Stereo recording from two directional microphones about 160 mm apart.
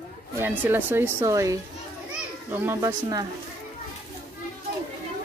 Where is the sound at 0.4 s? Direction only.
10° right (ahead or behind).